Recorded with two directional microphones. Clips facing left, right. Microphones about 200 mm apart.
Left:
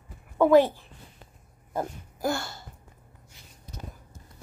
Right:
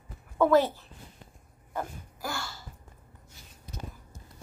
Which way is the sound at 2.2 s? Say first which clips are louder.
Left 8 dB; 50° left (ahead or behind).